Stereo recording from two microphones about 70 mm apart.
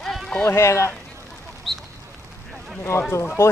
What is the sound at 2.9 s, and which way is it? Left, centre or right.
Speech, left.